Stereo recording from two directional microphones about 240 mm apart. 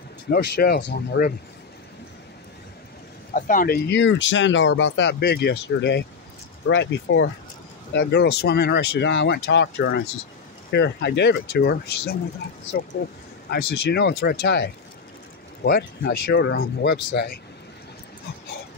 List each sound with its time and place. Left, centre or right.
0.6 s speech: left
3.3 s speech: left